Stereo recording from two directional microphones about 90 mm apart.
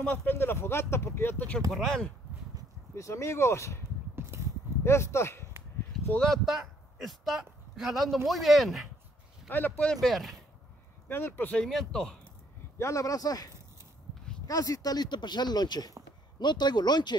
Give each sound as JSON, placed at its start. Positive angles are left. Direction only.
{"t": 0.0, "sound": "speech", "side_deg": 15}
{"t": 1.7, "sound": "speech", "side_deg": 5}
{"t": 3.0, "sound": "speech", "side_deg": 35}
{"t": 4.1, "sound": "biting", "side_deg": -25}
{"t": 4.8, "sound": "speech", "side_deg": 30}
{"t": 6.1, "sound": "speech", "side_deg": 5}
{"t": 9.5, "sound": "speech", "side_deg": 20}
{"t": 9.9, "sound": "speech", "side_deg": 0}
{"t": 11.1, "sound": "speech", "side_deg": 25}
{"t": 11.6, "sound": "speech", "side_deg": 5}
{"t": 12.7, "sound": "speech", "side_deg": 35}
{"t": 14.5, "sound": "speech", "side_deg": 40}